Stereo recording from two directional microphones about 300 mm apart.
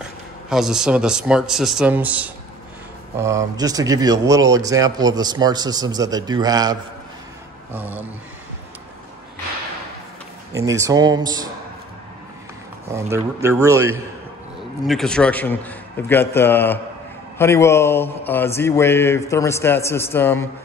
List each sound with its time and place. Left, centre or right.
0.5 s a man's voice: centre
10.5 s speech: centre
13.1 s speech: centre
14.9 s a man's voice: centre
17.4 s mantra: centre